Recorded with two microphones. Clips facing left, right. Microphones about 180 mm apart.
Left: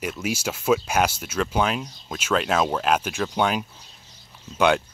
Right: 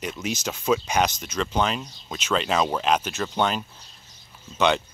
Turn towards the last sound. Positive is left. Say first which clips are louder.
# left 2 dB
turn(degrees=10)  # may be behind; listen again after turning